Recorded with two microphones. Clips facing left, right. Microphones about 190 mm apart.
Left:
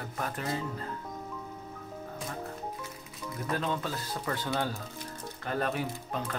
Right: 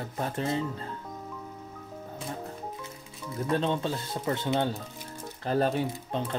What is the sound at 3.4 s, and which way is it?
Speech, 30° right (ahead or behind).